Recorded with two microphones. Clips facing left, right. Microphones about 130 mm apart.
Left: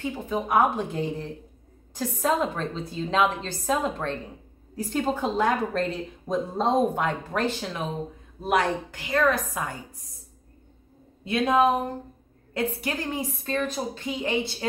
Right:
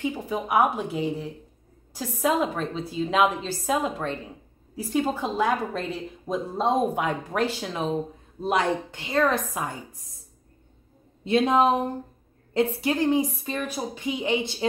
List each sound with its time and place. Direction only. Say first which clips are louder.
0.0 s a woman's voice: even; 15° right (ahead or behind)
8.4 s a woman's voice: even; 25° right (ahead or behind)
11.2 s a woman's voice: right 1 dB; 25° right (ahead or behind)